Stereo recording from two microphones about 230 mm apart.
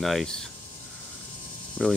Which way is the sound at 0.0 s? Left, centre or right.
Centre.